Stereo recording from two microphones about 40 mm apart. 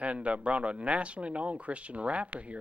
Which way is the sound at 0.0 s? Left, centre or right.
Right.